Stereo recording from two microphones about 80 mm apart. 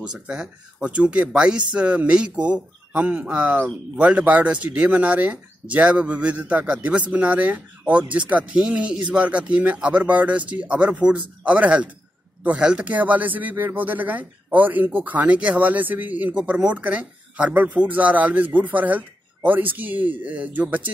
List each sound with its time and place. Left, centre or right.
0.1 s speech: centre